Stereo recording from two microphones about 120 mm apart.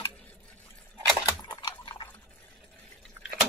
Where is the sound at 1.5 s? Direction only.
45° left (ahead or behind).